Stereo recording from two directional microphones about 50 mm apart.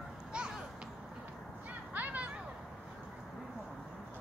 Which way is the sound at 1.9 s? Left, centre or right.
Right.